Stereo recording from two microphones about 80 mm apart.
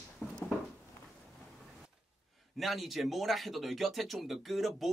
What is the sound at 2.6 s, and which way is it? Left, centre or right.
Speech, centre.